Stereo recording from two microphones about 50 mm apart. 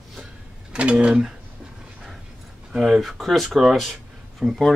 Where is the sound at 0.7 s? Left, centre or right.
Right.